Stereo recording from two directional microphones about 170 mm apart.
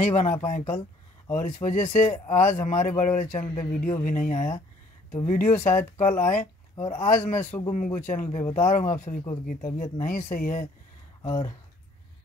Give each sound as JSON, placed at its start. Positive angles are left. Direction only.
{"t": 0.0, "sound": "speech", "side_deg": 45}